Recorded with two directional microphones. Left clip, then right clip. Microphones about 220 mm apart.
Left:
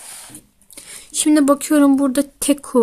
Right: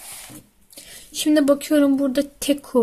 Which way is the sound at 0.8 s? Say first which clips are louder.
Left 3 dB; 20° left (ahead or behind).